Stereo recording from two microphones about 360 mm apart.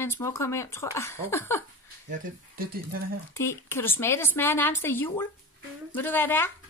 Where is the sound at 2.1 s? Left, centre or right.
Right.